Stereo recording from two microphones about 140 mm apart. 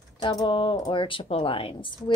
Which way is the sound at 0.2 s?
30° left (ahead or behind).